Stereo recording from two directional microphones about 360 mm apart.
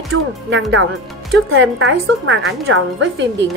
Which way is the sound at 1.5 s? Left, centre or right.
Right.